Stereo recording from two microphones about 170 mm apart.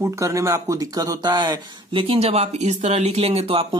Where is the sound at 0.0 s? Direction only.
20° right (ahead or behind).